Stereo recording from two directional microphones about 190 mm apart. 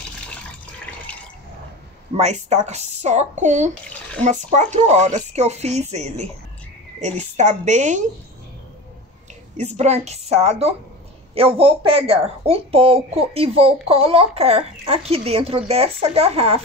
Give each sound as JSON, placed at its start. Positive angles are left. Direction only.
{"t": 2.1, "sound": "speech", "side_deg": -35}
{"t": 9.6, "sound": "speech", "side_deg": -35}